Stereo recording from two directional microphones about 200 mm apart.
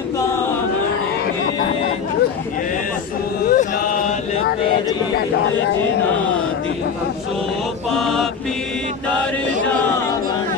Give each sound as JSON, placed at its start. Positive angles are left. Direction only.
{"t": 3.4, "sound": "chant", "side_deg": 45}
{"t": 7.9, "sound": "mantra", "side_deg": 0}